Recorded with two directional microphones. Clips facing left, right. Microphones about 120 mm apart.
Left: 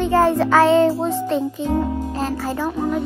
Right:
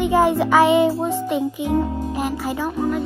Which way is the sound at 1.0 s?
15° right (ahead or behind).